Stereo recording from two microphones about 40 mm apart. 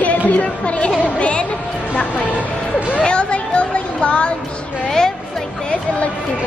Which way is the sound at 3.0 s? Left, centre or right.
Left.